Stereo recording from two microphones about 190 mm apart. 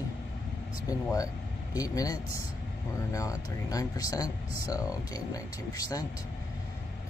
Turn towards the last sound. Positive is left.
turn(degrees=20)  # may be behind; listen again after turning